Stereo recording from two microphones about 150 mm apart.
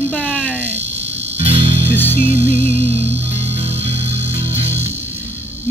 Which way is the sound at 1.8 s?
15° left (ahead or behind).